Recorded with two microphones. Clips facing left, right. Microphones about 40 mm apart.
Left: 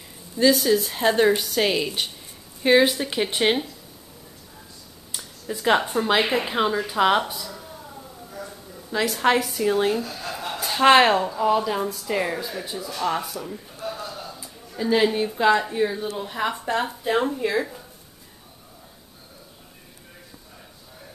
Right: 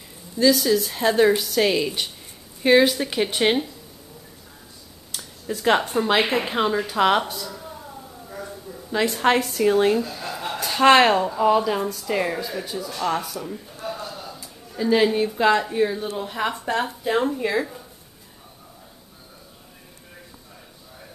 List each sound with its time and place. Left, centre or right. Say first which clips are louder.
0.6 s a woman's voice: even; centre
5.1 s speech: right 2 dB; centre
7.3 s a sound: right 2 dB; centre
9.1 s a woman's voice: left 1 dB; centre
13.8 s a sound: even; centre
14.7 s speech: right 1 dB; centre